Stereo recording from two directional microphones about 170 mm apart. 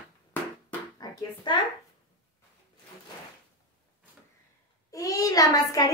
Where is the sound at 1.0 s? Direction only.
25° left (ahead or behind).